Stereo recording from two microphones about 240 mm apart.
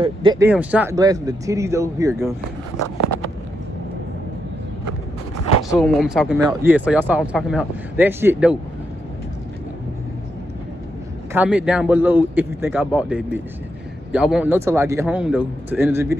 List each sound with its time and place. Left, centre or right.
0.0 s speech: centre
0.5 s speech: centre
5.7 s speech: centre
11.3 s speech: centre